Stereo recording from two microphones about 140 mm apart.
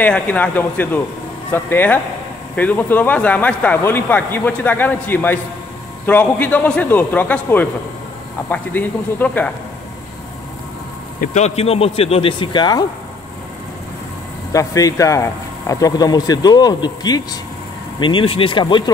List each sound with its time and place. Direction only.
0.0 s speech: 10° left (ahead or behind)
11.1 s a man's voice: 55° left (ahead or behind); by 12.8 s 30° left (ahead or behind)
14.5 s speech: 25° left (ahead or behind)